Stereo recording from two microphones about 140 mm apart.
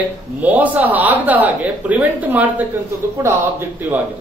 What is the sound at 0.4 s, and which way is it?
A man's voice, 10° right (ahead or behind).